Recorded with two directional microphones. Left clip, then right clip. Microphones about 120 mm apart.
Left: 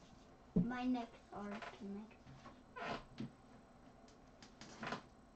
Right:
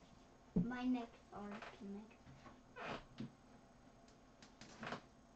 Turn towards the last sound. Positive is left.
turn(degrees=-5)  # may be behind; listen again after turning